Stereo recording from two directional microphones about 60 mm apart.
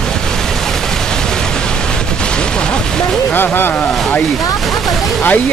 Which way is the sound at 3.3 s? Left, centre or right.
Left.